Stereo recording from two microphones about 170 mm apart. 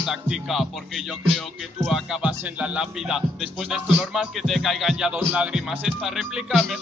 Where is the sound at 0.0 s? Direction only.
Centre (ahead or behind).